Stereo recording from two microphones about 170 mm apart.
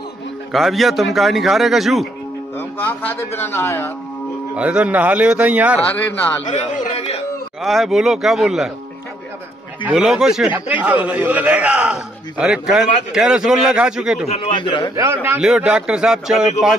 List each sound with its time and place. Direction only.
0.5 s a man's voice: centre (ahead or behind)
2.5 s speech: 10° left (ahead or behind)
4.6 s a man's voice: 10° right (ahead or behind)
6.4 s speech: 40° left (ahead or behind)
7.6 s a man's voice: centre (ahead or behind)
9.8 s a man's voice: 5° right (ahead or behind)
14.2 s a man's voice: 40° left (ahead or behind)
15.0 s a man's voice: 15° right (ahead or behind)
15.4 s a man's voice: 5° right (ahead or behind)